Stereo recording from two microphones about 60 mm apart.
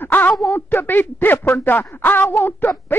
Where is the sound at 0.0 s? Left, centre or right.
Left.